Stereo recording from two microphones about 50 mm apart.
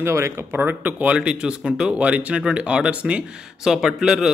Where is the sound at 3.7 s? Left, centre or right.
Centre.